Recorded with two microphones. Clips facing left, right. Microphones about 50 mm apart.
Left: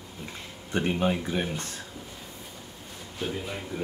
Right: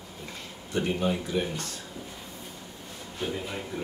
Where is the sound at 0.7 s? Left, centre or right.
Left.